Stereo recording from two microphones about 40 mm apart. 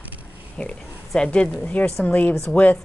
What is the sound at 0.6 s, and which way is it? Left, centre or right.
Speech, left.